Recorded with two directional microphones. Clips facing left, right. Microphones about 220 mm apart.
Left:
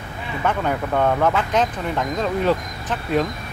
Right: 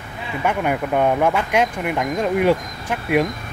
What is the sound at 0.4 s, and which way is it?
Speech, 10° right (ahead or behind).